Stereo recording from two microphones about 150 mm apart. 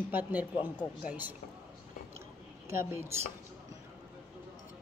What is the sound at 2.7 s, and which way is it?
Speech, 15° right (ahead or behind).